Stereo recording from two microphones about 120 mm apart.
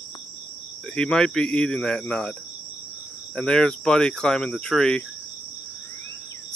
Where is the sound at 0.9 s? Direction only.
5° left (ahead or behind).